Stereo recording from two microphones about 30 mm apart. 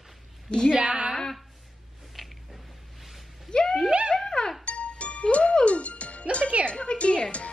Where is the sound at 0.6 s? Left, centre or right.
Right.